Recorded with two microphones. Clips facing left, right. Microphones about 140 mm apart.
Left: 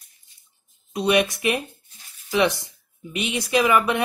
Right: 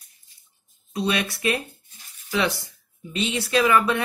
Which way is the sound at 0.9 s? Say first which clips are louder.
Left 5 dB; 20° left (ahead or behind).